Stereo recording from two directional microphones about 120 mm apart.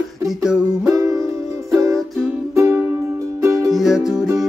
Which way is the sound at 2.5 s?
25° right (ahead or behind).